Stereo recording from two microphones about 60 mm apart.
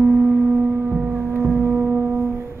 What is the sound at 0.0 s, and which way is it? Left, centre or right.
Singing bowl, right.